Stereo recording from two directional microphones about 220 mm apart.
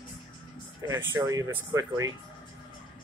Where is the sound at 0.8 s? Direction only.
15° right (ahead or behind).